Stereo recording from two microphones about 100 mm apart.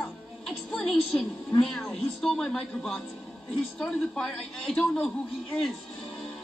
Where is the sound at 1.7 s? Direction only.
5° left (ahead or behind).